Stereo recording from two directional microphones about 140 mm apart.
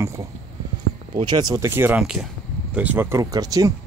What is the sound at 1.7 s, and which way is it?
Speech, 15° right (ahead or behind).